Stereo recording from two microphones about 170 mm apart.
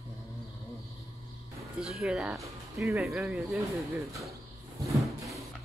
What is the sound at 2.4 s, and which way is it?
Speech, 15° right (ahead or behind).